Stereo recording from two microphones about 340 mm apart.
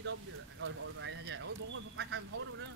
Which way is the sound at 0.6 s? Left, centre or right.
Right.